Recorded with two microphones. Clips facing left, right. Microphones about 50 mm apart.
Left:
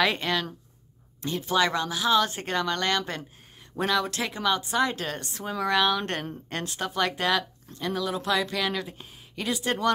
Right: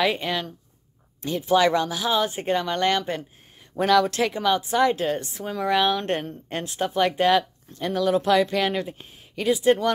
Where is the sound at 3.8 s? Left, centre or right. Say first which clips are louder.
Right 7 dB; right.